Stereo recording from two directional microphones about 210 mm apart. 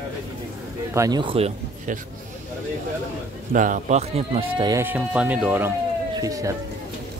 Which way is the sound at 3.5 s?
35° right (ahead or behind).